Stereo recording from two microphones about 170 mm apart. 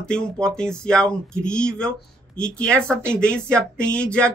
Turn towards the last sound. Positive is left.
turn(degrees=5)  # may be behind; listen again after turning